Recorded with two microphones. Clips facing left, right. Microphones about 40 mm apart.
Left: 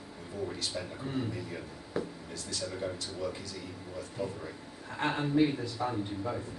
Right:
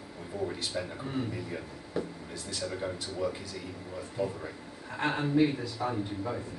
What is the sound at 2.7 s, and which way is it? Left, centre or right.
A man's voice, centre.